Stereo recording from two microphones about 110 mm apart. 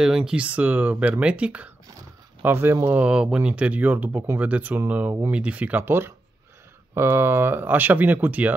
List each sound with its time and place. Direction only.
0.0 s speech: 5° right (ahead or behind)